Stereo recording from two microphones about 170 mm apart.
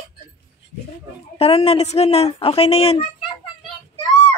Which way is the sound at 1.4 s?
35° left (ahead or behind).